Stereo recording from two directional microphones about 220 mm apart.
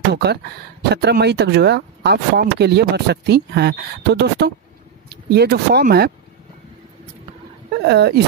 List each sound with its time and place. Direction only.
0.1 s speech: 50° right (ahead or behind)
7.8 s speech: 50° right (ahead or behind)